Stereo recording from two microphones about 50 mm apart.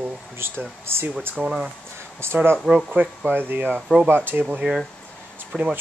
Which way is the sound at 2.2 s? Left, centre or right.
Right.